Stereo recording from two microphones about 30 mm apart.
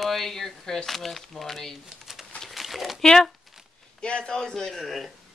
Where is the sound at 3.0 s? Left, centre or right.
Left.